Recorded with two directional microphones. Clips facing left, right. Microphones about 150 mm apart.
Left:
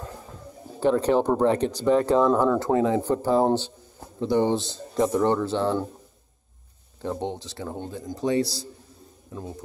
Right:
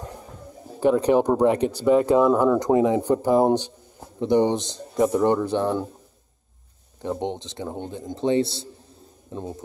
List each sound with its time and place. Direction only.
0.7 s speech: 10° right (ahead or behind)
7.0 s speech: 15° right (ahead or behind)